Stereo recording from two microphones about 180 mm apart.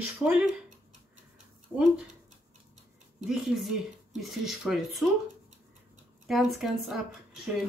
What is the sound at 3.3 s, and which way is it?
Speech, 5° right (ahead or behind).